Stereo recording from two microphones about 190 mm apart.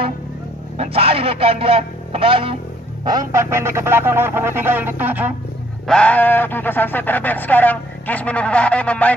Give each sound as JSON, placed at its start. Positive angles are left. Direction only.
{"t": 0.7, "sound": "speech", "side_deg": -30}
{"t": 3.1, "sound": "a sound", "side_deg": -20}
{"t": 5.9, "sound": "speech", "side_deg": 5}